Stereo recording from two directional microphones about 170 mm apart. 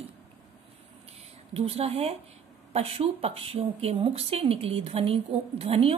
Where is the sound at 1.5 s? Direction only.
35° right (ahead or behind).